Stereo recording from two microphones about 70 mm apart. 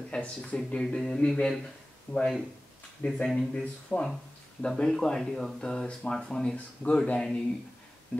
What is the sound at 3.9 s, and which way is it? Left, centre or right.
Speech, centre.